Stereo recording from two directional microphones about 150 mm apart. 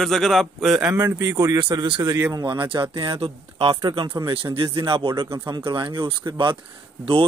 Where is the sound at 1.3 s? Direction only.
30° right (ahead or behind).